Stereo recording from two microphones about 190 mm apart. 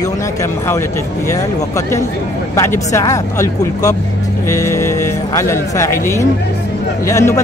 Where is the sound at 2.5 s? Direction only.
15° left (ahead or behind).